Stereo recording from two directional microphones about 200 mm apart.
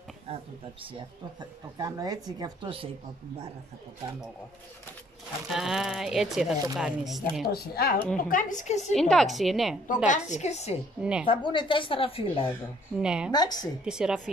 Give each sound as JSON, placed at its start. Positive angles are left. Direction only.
{"t": 0.3, "sound": "speech", "side_deg": -30}
{"t": 5.5, "sound": "speech", "side_deg": 0}
{"t": 7.5, "sound": "a woman's voice", "side_deg": 50}
{"t": 9.1, "sound": "speech", "side_deg": 0}
{"t": 10.0, "sound": "a woman's voice", "side_deg": 35}
{"t": 11.0, "sound": "speech", "side_deg": -5}
{"t": 11.2, "sound": "a woman's voice", "side_deg": 25}
{"t": 13.0, "sound": "speech", "side_deg": -5}
{"t": 13.3, "sound": "a woman's voice", "side_deg": 20}
{"t": 13.8, "sound": "speech", "side_deg": -5}